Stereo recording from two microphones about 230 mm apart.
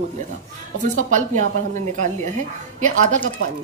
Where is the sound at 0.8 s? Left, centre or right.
Right.